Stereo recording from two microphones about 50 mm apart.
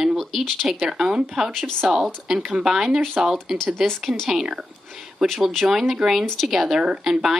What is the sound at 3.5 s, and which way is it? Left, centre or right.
Speech, centre.